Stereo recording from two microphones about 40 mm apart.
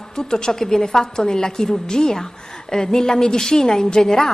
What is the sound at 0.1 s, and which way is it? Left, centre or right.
A woman's voice, centre.